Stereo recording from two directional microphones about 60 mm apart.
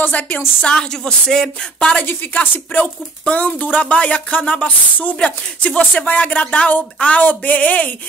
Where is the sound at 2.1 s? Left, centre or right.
Left.